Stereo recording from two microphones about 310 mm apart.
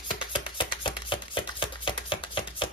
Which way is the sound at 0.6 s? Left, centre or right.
Centre.